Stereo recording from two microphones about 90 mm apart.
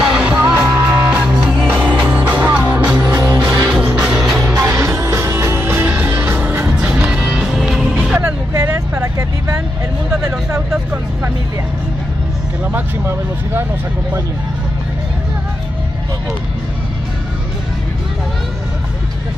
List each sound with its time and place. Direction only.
0.0 s music: 10° right (ahead or behind)
4.4 s music: 25° right (ahead or behind); by 8.2 s 10° right (ahead or behind)
12.6 s vehicle: 20° right (ahead or behind)